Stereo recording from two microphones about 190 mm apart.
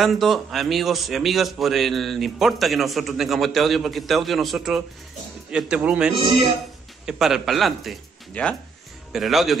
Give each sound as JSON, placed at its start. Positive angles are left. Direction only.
{"t": 0.0, "sound": "a man's voice", "side_deg": 0}
{"t": 6.1, "sound": "speech", "side_deg": -25}
{"t": 7.1, "sound": "a man's voice", "side_deg": 0}